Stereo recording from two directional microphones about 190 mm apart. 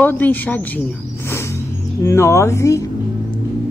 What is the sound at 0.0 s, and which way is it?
Speech, 10° left (ahead or behind).